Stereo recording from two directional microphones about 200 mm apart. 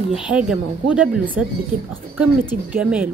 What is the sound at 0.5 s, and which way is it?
Speech, 5° right (ahead or behind).